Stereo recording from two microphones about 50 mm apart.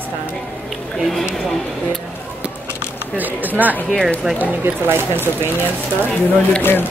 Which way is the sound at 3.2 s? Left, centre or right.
Right.